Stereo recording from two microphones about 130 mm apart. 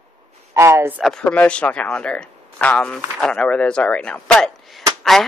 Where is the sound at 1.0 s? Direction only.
5° left (ahead or behind).